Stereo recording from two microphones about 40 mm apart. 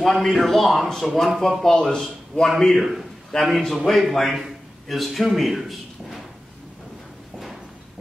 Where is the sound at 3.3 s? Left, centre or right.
Centre.